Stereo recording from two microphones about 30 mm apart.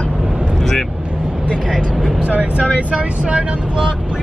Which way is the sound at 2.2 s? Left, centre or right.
Right.